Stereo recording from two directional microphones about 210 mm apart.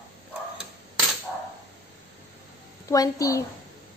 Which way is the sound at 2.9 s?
15° left (ahead or behind).